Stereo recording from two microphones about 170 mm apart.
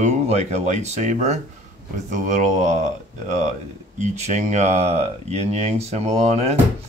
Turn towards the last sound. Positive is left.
turn(degrees=-40)  # may be behind; listen again after turning